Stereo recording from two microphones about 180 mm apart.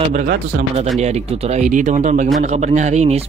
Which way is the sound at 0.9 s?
35° right (ahead or behind).